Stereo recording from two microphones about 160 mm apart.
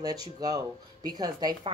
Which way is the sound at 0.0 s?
25° right (ahead or behind).